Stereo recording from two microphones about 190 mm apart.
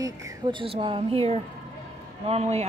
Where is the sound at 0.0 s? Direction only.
20° right (ahead or behind).